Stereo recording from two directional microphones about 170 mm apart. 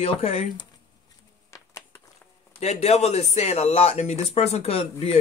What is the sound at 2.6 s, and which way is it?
Speech, 40° left (ahead or behind).